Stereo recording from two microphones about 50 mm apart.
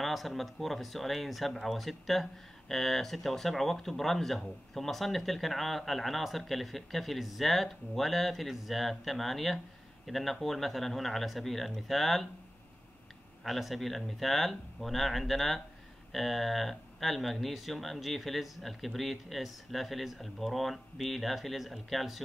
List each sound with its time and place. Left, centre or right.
0.0 s speech: centre
13.4 s speech: centre